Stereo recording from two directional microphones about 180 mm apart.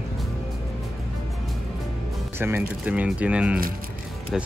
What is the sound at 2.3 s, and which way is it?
Speech, 15° right (ahead or behind).